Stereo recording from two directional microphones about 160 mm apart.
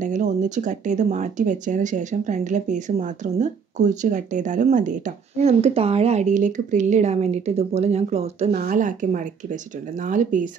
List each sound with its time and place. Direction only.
0.0 s speech: 50° right (ahead or behind)
8.5 s speech: 55° right (ahead or behind)